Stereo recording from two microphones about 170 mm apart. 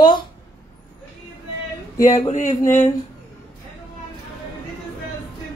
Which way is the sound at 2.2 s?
40° left (ahead or behind).